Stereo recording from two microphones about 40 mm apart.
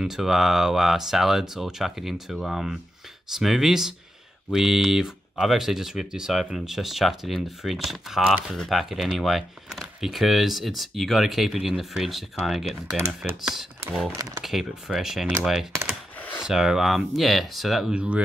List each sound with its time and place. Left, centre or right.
0.0 s speech: centre
17.9 s speech: right